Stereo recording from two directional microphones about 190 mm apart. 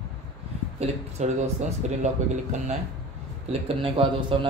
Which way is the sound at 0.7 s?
35° right (ahead or behind).